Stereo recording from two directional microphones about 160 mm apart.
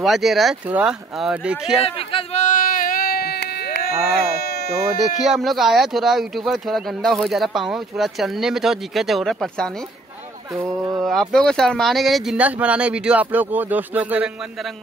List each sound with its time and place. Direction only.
0.0 s speech: centre (ahead or behind)
2.0 s a sound: 35° left (ahead or behind)
2.4 s baby cry: 55° left (ahead or behind); by 3.9 s 90° left
4.4 s a sound: 75° left (ahead or behind)
5.0 s speech: centre (ahead or behind)
10.5 s speech: 20° right (ahead or behind)
11.0 s speech: centre (ahead or behind)